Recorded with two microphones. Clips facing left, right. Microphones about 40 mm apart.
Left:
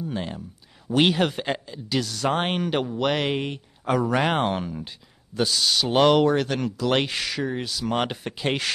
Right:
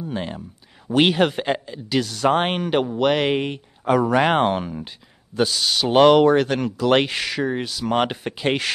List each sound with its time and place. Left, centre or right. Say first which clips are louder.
0.0 s speech: right 2 dB; centre